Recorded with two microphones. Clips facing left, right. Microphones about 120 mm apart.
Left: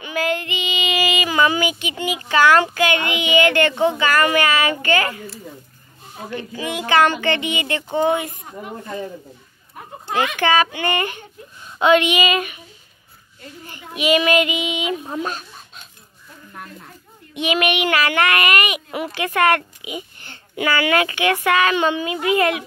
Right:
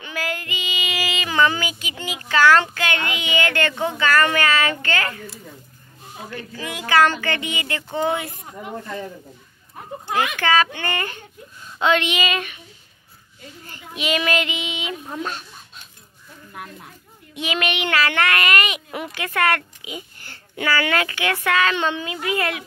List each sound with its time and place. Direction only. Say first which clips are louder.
0.0 s child singing: left 6 dB; 20° left (ahead or behind)
6.3 s speech: left 6 dB; 20° left (ahead or behind)
10.1 s speech: left 2 dB; 20° left (ahead or behind)
13.7 s speech: left 6 dB; 15° left (ahead or behind)
17.4 s a child's voice: left 5 dB; 15° left (ahead or behind)